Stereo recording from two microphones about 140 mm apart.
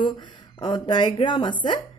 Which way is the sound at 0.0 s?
35° left (ahead or behind).